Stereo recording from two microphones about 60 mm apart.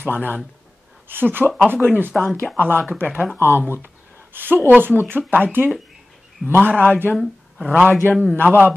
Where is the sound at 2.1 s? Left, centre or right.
Centre.